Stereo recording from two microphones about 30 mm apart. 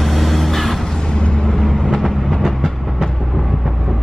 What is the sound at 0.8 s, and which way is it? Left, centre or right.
Vehicle, left.